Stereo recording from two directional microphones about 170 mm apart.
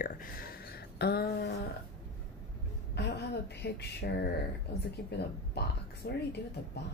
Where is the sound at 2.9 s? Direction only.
75° left (ahead or behind).